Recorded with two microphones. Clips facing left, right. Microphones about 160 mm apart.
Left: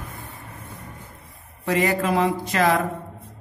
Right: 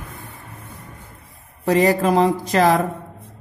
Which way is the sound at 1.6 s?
35° right (ahead or behind).